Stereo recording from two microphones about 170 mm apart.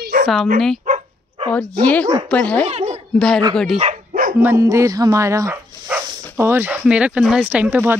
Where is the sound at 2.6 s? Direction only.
40° right (ahead or behind).